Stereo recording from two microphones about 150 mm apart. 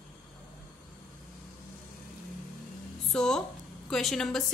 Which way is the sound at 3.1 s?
5° left (ahead or behind).